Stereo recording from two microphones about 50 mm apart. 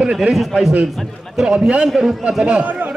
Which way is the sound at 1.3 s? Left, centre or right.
Centre.